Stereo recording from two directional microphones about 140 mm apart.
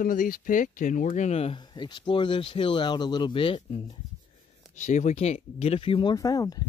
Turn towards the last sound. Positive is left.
turn(degrees=25)  # may be behind; listen again after turning